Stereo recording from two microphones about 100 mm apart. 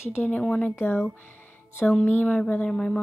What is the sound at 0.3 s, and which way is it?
A woman's voice, 15° left (ahead or behind).